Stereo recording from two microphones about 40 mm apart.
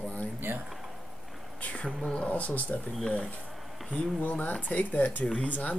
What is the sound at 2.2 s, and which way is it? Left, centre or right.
Speech, left.